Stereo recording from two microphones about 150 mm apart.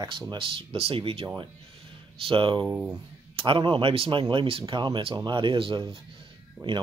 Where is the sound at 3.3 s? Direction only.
35° right (ahead or behind).